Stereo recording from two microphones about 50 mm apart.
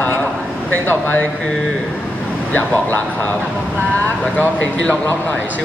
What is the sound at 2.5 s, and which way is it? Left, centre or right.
Speech, left.